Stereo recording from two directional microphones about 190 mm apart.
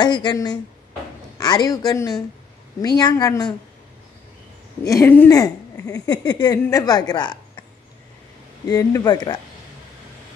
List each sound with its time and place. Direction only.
0.0 s speech: 25° left (ahead or behind)
4.8 s speech: 15° left (ahead or behind)
8.6 s speech: 20° left (ahead or behind)